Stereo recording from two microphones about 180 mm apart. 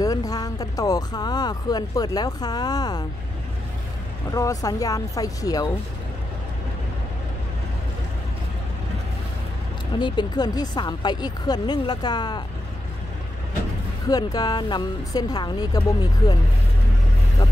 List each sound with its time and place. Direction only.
0.0 s speech: 20° left (ahead or behind)
4.3 s speech: 20° left (ahead or behind)
9.9 s speech: 25° left (ahead or behind)
14.0 s speech: 20° left (ahead or behind)